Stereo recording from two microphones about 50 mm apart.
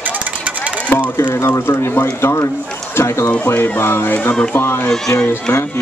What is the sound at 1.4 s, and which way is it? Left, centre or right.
Speech, left.